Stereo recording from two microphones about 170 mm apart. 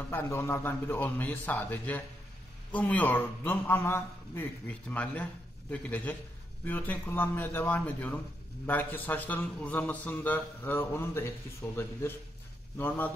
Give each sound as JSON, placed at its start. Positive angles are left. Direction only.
{"t": 0.1, "sound": "a man's voice", "side_deg": 15}